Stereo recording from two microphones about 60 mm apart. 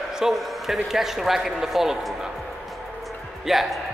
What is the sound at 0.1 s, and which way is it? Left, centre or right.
A man's voice, centre.